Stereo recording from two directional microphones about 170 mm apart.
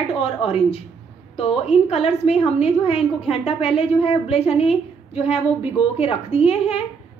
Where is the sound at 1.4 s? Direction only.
35° left (ahead or behind).